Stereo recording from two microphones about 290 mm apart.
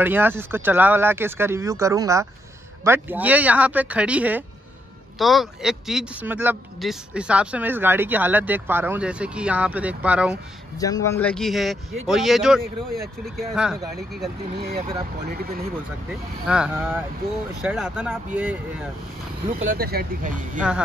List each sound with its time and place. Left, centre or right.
0.0 s speech: centre
10.8 s speech: centre
15.3 s speech: right
16.4 s speech: centre
19.6 s speech: right